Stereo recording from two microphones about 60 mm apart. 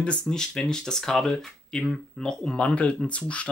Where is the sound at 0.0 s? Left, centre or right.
Centre.